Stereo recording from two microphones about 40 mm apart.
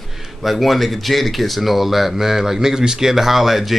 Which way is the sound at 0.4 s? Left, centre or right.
Centre.